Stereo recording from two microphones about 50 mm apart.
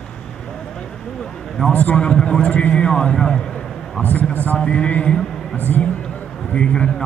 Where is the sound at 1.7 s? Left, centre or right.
Left.